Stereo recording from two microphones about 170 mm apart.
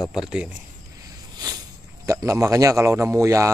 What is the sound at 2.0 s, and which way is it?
A man's voice, 15° right (ahead or behind).